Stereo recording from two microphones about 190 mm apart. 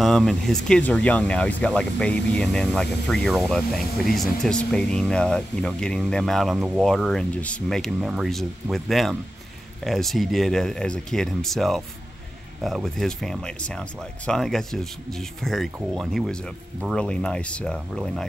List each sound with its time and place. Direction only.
0.0 s speech: centre (ahead or behind)